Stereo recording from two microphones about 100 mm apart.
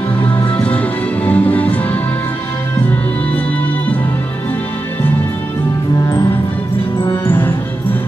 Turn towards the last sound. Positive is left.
turn(degrees=20)  # may be behind; listen again after turning